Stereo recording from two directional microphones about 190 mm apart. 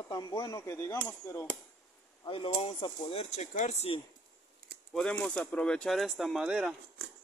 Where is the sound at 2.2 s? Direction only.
25° left (ahead or behind).